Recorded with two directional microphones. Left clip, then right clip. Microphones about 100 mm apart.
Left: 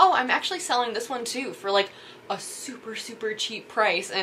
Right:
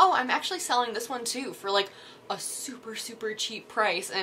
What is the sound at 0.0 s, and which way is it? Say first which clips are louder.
A woman's voice: left 3 dB; 15° right (ahead or behind).